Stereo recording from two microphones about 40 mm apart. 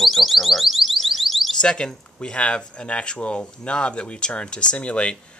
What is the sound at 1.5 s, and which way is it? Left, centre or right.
Speech, left.